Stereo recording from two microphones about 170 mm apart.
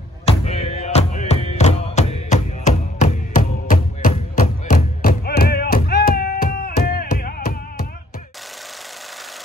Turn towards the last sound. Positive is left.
turn(degrees=60)  # may be behind; listen again after turning